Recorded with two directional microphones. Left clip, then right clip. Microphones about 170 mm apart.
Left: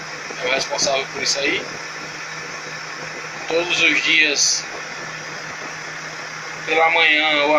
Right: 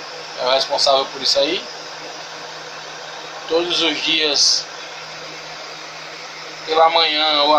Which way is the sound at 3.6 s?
20° right (ahead or behind).